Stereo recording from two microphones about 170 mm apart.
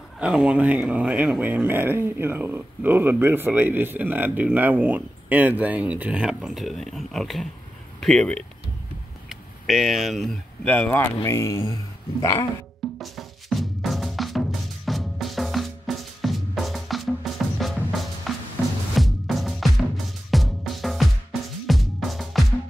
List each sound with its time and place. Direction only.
0.2 s speech: 5° right (ahead or behind)
10.7 s speech: 10° left (ahead or behind)
13.0 s music: centre (ahead or behind)
21.6 s drum: centre (ahead or behind)